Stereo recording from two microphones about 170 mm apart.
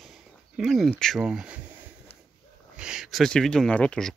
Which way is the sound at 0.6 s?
Centre (ahead or behind).